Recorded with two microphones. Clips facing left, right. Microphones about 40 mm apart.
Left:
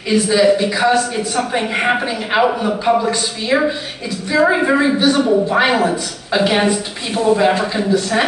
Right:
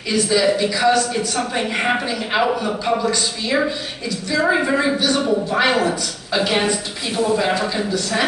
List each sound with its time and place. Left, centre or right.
0.1 s a woman's voice: centre